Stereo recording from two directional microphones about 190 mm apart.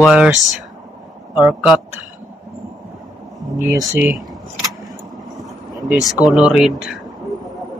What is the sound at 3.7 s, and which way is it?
Speech, 10° right (ahead or behind).